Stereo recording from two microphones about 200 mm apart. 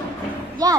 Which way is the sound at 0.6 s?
20° right (ahead or behind).